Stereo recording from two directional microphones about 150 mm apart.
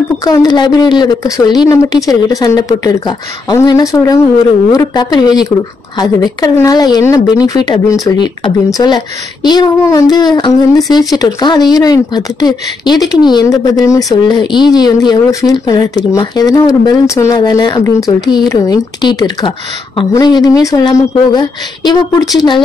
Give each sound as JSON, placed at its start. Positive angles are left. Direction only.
{"t": 0.2, "sound": "speech", "side_deg": 25}